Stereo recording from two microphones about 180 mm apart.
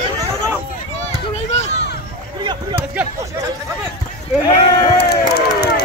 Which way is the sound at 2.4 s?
25° right (ahead or behind).